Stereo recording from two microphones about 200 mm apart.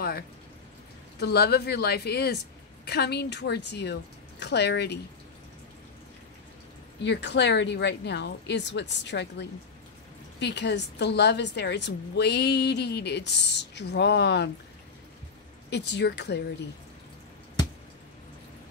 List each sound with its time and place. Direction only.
1.2 s a woman's voice: 55° left (ahead or behind)
7.0 s a woman's voice: 60° left (ahead or behind)
15.7 s a woman's voice: 60° left (ahead or behind)